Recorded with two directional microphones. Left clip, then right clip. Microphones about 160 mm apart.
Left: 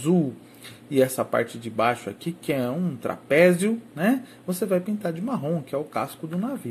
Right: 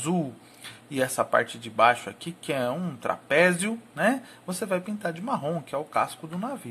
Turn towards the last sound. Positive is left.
turn(degrees=-10)  # may be behind; listen again after turning